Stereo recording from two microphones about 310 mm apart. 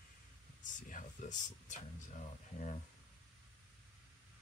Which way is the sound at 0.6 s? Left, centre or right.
Left.